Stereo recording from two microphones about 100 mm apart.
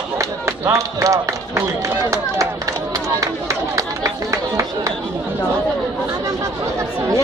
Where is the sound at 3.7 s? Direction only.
35° right (ahead or behind).